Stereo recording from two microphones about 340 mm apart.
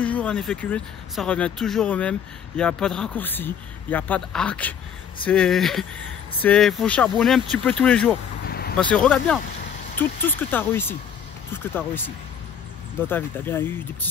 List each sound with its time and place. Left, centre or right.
0.0 s speech: centre
8.5 s vehicle: left
8.7 s speech: centre
13.0 s speech: centre